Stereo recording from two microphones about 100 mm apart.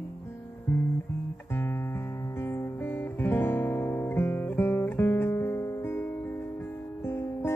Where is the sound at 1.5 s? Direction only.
25° left (ahead or behind).